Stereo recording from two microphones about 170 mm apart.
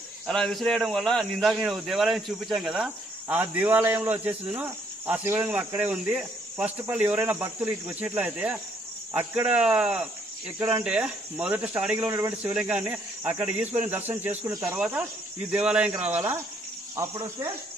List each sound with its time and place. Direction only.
0.3 s speech: 5° left (ahead or behind)
16.9 s speech: 20° right (ahead or behind)